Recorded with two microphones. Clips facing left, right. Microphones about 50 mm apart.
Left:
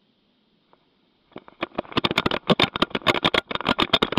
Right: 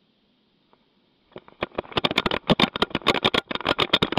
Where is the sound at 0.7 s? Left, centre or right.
Centre.